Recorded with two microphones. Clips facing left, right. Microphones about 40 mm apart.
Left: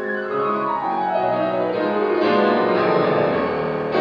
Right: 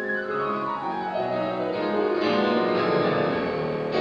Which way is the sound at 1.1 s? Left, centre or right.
Left.